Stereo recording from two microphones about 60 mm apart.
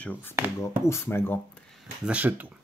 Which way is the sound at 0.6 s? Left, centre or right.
Left.